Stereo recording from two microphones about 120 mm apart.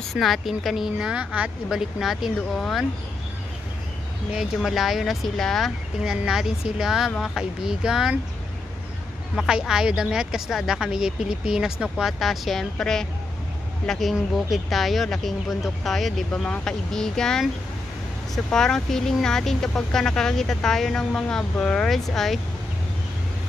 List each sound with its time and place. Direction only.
0.1 s speech: centre (ahead or behind)
4.4 s speech: centre (ahead or behind)
9.3 s speech: 5° right (ahead or behind)